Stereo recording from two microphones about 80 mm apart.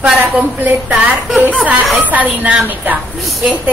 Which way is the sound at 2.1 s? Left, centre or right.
Centre.